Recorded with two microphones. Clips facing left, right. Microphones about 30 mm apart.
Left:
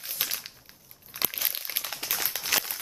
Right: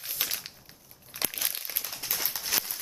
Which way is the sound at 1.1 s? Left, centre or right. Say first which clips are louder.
Left 1 dB; centre.